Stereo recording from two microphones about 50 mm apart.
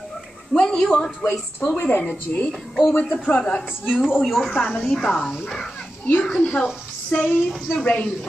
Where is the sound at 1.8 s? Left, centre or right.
Left.